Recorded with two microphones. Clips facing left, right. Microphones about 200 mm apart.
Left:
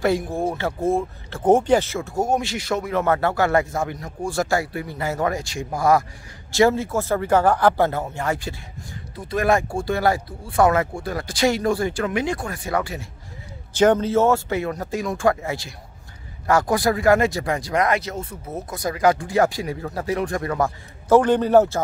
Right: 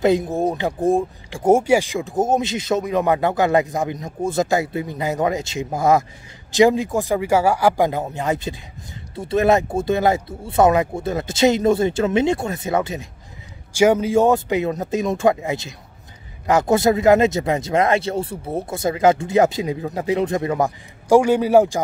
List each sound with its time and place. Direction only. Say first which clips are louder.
0.0 s speech: right 4 dB; 20° right (ahead or behind)
13.7 s speech: right 2 dB; 10° right (ahead or behind)